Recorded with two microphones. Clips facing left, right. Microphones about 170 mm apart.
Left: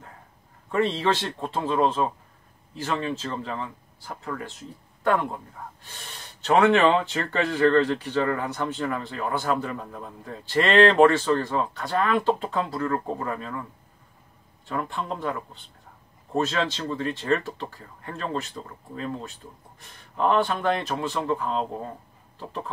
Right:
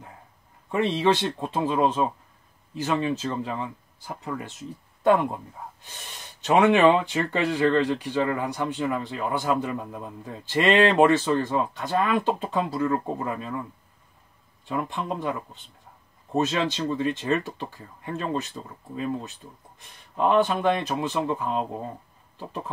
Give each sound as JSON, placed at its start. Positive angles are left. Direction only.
{"t": 0.7, "sound": "speech", "side_deg": -15}
{"t": 6.4, "sound": "speech", "side_deg": -15}
{"t": 14.7, "sound": "speech", "side_deg": -15}
{"t": 16.3, "sound": "speech", "side_deg": -20}